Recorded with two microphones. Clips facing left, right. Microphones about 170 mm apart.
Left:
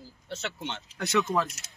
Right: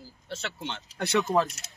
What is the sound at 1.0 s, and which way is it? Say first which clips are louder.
Speech: right 2 dB; 30° right (ahead or behind).